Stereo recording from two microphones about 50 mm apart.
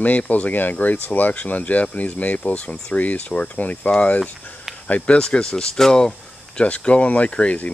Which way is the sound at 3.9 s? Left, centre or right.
Centre.